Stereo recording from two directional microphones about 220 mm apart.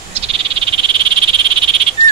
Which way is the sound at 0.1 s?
25° right (ahead or behind).